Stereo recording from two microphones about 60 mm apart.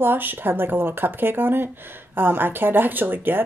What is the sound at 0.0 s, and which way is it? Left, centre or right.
Speech, right.